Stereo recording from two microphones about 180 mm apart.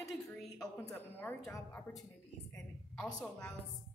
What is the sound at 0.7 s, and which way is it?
Speech, 10° left (ahead or behind).